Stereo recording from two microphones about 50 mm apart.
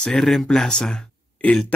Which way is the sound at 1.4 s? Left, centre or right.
Left.